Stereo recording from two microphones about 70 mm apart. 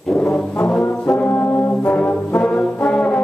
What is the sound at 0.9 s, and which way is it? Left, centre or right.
Brass instrument, centre.